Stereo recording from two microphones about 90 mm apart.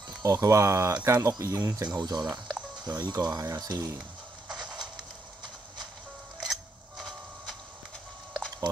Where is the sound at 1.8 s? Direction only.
50° right (ahead or behind).